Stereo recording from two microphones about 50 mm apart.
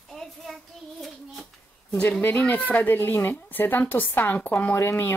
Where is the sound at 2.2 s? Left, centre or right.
Left.